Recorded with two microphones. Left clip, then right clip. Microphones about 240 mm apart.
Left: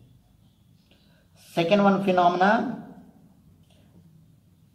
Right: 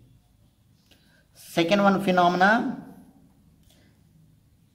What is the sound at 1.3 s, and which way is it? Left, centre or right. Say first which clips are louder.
Speech: left 1 dB; right.